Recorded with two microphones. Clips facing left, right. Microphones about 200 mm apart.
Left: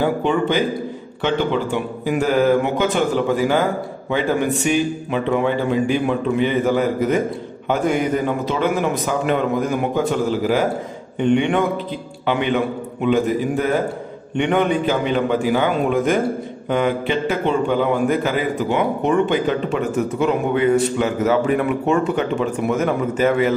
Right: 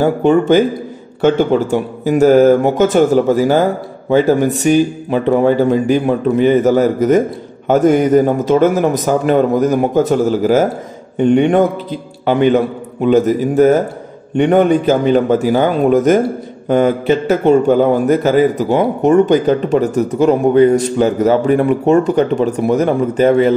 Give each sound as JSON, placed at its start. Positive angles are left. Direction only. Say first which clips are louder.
{"t": 0.0, "sound": "a man's voice", "louder": "right 7 dB", "side_deg": -45}